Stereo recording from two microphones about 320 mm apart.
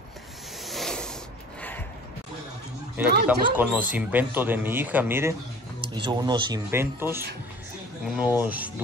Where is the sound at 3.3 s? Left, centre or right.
Centre.